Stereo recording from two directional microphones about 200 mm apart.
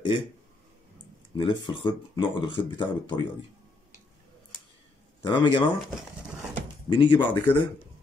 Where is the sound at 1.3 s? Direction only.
25° left (ahead or behind).